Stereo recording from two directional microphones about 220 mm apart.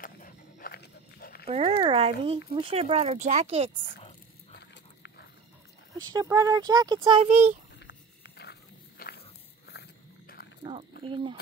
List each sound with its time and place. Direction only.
0.0 s dog: 40° left (ahead or behind)
1.4 s speech: 25° right (ahead or behind)
6.1 s speech: 15° right (ahead or behind)
7.8 s wild animals: 50° left (ahead or behind)
9.7 s dog: 45° left (ahead or behind)
10.6 s a sound: 25° right (ahead or behind)
11.0 s speech: 25° right (ahead or behind)